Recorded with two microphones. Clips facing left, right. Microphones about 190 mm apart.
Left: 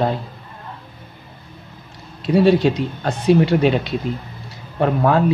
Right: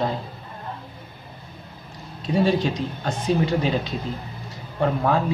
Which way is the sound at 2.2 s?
70° left (ahead or behind).